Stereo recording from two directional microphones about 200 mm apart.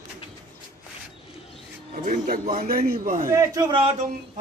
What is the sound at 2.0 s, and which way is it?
A man's voice, 45° right (ahead or behind).